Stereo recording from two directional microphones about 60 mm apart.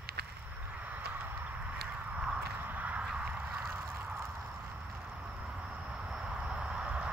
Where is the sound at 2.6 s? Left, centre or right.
Right.